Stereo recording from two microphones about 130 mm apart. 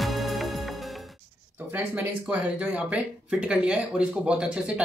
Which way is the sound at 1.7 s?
15° right (ahead or behind).